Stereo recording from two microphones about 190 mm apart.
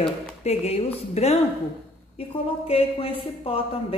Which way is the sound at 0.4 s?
35° left (ahead or behind).